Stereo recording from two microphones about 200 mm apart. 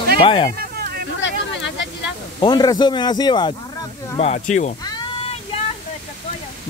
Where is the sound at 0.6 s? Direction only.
50° right (ahead or behind).